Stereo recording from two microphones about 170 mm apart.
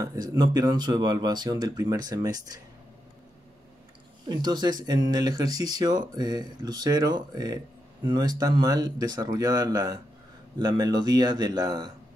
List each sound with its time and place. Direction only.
0.0 s speech: 20° right (ahead or behind)
4.3 s speech: 25° right (ahead or behind)